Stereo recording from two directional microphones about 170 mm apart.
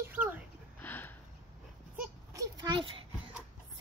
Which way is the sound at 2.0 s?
20° right (ahead or behind).